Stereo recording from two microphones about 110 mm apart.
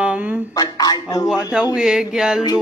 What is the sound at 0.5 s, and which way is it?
Speech, 35° left (ahead or behind).